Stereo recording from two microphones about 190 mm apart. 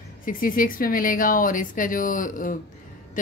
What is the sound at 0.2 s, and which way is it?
Speech, 45° left (ahead or behind).